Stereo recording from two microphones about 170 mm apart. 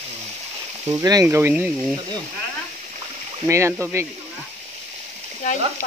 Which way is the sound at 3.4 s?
15° right (ahead or behind).